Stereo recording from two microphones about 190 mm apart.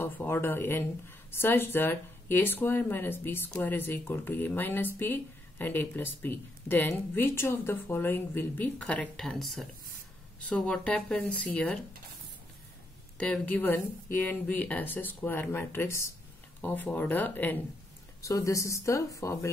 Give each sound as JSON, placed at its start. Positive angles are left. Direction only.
{"t": 0.0, "sound": "speech", "side_deg": 10}
{"t": 13.2, "sound": "speech", "side_deg": 10}